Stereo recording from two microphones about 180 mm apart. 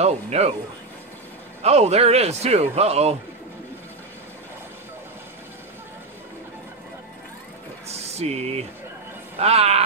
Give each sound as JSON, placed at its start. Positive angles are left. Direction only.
{"t": 0.0, "sound": "speech", "side_deg": -35}
{"t": 1.6, "sound": "speech", "side_deg": -35}
{"t": 7.9, "sound": "music", "side_deg": -35}
{"t": 9.4, "sound": "speech", "side_deg": -35}